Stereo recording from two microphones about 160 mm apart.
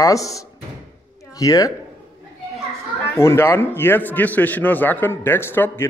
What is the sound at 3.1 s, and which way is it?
A man's voice, 15° left (ahead or behind).